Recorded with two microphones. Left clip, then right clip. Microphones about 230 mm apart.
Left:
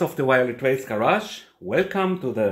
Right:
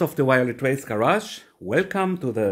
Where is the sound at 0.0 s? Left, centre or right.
Right.